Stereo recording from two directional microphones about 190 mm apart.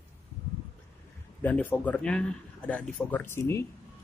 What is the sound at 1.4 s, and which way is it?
Speech, 10° left (ahead or behind).